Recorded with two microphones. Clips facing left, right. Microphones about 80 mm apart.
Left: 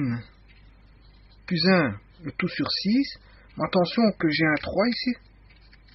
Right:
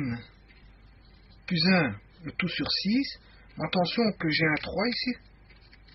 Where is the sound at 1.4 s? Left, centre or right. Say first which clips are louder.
Left 4 dB; left.